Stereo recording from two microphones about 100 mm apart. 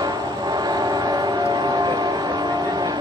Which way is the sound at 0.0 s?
45° right (ahead or behind).